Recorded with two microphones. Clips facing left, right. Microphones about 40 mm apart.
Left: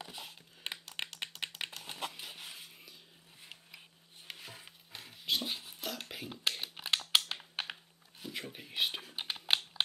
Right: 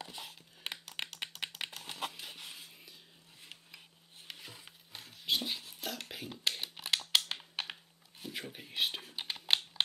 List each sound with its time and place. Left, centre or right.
0.0 s computer keyboard: centre
2.4 s rub: centre
4.3 s music: centre
4.6 s a sound: centre
5.6 s computer keyboard: centre
7.2 s typing: centre
8.2 s computer keyboard: centre